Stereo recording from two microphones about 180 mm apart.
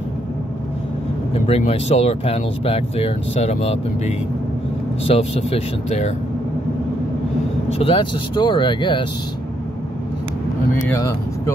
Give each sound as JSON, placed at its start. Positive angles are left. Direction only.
{"t": 1.6, "sound": "speech", "side_deg": 35}
{"t": 7.8, "sound": "speech", "side_deg": 25}
{"t": 10.9, "sound": "speech", "side_deg": 15}